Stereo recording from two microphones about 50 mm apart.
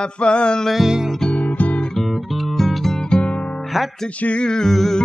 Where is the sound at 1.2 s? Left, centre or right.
Left.